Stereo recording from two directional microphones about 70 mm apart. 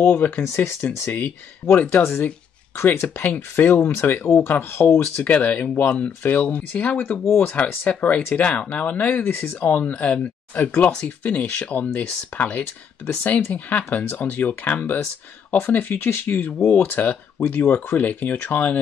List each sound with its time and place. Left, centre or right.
0.6 s speech: left
1.8 s speech: left
2.8 s speech: left